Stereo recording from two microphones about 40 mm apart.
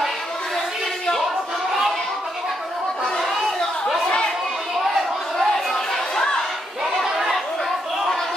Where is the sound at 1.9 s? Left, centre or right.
Centre.